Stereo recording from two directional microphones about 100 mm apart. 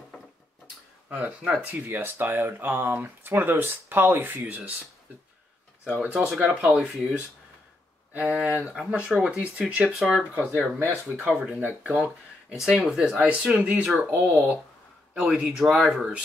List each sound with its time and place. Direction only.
1.1 s speech: 15° right (ahead or behind)
6.0 s speech: 5° right (ahead or behind)
10.8 s speech: 20° right (ahead or behind)